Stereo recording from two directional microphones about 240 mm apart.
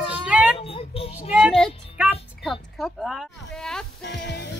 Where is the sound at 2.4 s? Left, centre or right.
Centre.